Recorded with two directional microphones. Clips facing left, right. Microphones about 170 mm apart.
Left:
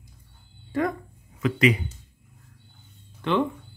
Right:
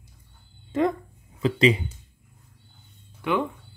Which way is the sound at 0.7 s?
20° right (ahead or behind).